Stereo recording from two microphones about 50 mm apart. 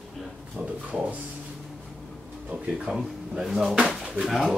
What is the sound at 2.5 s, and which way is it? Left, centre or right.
Speech, centre.